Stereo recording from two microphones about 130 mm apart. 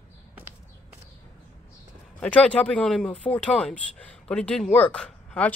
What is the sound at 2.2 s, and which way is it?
Speech, 10° left (ahead or behind).